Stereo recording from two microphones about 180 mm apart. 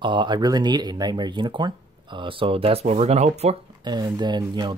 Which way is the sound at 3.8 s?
20° right (ahead or behind).